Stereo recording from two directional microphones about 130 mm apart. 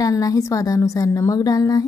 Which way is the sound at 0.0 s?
25° left (ahead or behind).